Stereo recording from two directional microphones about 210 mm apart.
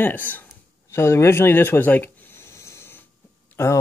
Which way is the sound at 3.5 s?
15° left (ahead or behind).